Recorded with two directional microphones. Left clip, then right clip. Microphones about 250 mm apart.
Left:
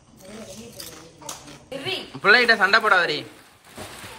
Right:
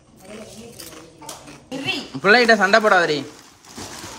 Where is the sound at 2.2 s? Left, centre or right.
Centre.